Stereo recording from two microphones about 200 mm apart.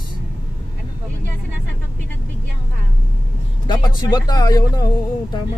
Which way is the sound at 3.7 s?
20° left (ahead or behind).